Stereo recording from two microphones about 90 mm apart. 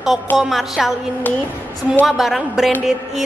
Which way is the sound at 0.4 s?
5° right (ahead or behind).